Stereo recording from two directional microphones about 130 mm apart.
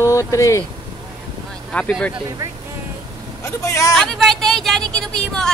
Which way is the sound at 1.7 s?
10° left (ahead or behind).